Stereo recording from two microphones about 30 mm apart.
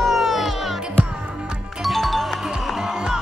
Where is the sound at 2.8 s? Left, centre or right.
Centre.